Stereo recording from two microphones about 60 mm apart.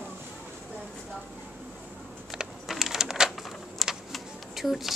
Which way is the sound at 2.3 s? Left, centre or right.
Centre.